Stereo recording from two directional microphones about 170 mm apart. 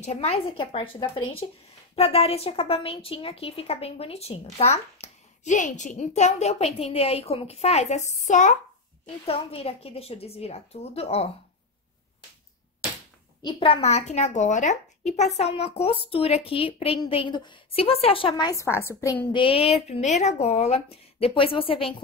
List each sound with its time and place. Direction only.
0.0 s a woman's voice: 40° left (ahead or behind)
9.0 s a woman's voice: 35° left (ahead or behind)
13.4 s a woman's voice: 30° left (ahead or behind)
18.5 s a woman's voice: 15° left (ahead or behind)
19.3 s a woman's voice: 30° left (ahead or behind)